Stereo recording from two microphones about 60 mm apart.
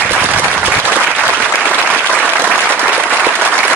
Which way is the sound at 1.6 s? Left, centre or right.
Right.